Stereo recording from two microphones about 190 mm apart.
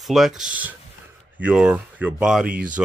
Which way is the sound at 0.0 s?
Centre (ahead or behind).